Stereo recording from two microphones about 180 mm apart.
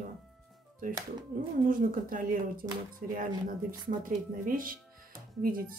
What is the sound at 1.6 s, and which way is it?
Speech, 50° right (ahead or behind).